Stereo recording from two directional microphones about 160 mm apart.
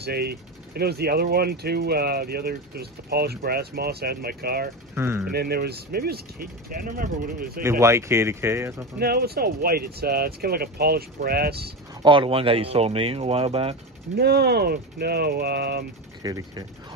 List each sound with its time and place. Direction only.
0.0 s speech: 75° right (ahead or behind)
4.9 s speech: 15° right (ahead or behind)
5.3 s speech: 80° right
7.8 s speech: 15° right (ahead or behind)
9.0 s speech: 75° right (ahead or behind)
12.0 s speech: 30° right (ahead or behind)
14.1 s speech: 90° right
16.2 s speech: 25° right (ahead or behind)